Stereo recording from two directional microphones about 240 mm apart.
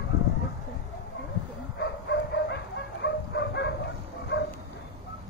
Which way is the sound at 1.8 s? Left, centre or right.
Left.